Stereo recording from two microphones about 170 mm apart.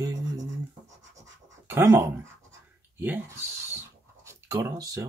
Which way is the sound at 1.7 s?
15° right (ahead or behind).